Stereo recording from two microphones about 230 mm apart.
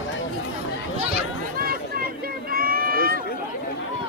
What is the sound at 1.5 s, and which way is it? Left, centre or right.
Run, right.